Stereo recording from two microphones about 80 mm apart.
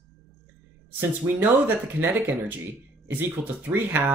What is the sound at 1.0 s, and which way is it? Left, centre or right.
Speech, right.